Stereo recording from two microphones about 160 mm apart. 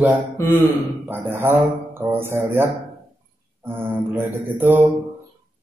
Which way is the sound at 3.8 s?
10° right (ahead or behind).